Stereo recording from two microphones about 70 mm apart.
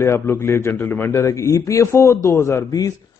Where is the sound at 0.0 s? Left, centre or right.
Left.